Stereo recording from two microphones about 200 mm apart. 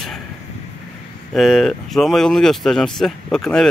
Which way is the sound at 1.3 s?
Centre (ahead or behind).